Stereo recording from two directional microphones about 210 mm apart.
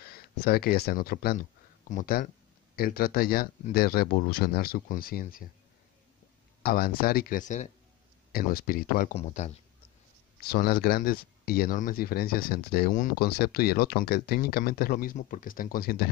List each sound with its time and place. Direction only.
0.0 s speech: 45° left (ahead or behind)
6.6 s speech: 45° left (ahead or behind)
10.4 s speech: 45° left (ahead or behind)